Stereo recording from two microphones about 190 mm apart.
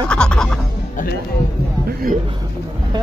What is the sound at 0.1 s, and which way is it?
Music, 5° left (ahead or behind).